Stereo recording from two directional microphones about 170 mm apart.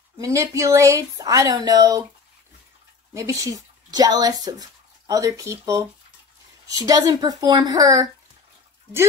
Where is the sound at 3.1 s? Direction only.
20° right (ahead or behind).